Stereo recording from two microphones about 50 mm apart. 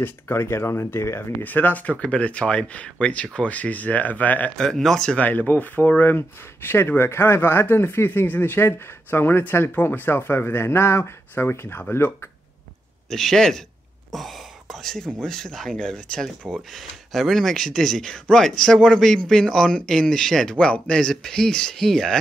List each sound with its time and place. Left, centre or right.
0.0 s speech: left
1.4 s speech: left
4.6 s speech: centre
5.1 s speech: left
6.1 s speech: left
13.1 s speech: centre
20.5 s speech: left